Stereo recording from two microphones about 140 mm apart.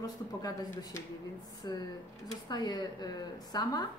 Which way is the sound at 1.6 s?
30° left (ahead or behind).